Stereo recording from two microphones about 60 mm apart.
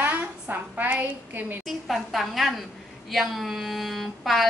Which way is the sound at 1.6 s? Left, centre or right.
Centre.